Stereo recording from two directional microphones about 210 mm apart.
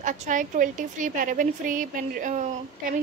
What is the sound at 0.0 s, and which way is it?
A woman's voice, 35° right (ahead or behind).